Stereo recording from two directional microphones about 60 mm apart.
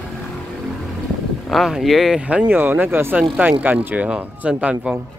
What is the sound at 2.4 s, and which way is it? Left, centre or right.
Speech, right.